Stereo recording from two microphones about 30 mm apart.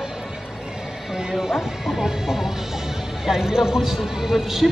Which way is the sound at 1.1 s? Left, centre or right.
Centre.